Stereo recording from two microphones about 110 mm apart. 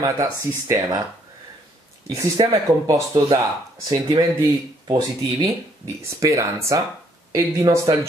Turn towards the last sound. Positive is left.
turn(degrees=-35)  # may be behind; listen again after turning